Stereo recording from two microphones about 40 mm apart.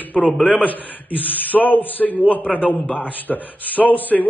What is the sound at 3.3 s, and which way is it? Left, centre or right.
Speech, left.